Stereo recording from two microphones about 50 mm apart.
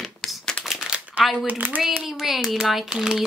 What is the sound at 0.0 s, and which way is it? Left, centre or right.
Crumpling, centre.